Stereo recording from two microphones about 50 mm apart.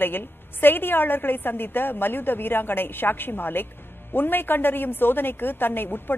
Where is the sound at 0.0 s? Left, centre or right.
Left.